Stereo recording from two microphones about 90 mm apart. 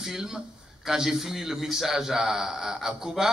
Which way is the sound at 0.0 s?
5° right (ahead or behind).